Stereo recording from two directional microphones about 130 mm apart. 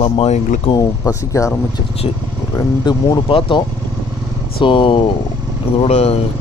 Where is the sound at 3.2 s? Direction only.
40° left (ahead or behind).